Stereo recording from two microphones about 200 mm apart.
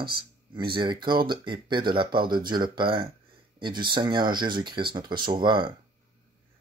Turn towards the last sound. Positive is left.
turn(degrees=-25)  # may be behind; listen again after turning